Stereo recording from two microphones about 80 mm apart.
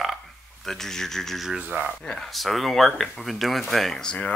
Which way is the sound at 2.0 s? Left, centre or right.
Centre.